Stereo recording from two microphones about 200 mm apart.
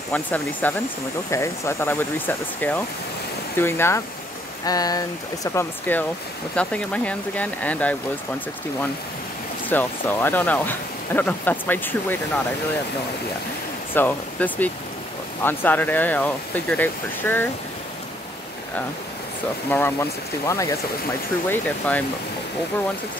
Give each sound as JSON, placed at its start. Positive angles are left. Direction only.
{"t": 0.1, "sound": "speech", "side_deg": 10}
{"t": 9.7, "sound": "speech", "side_deg": 10}
{"t": 13.9, "sound": "speech", "side_deg": 10}
{"t": 19.7, "sound": "speech", "side_deg": 10}